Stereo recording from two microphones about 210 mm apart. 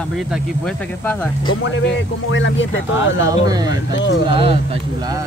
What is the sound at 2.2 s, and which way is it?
Speech, 65° left (ahead or behind).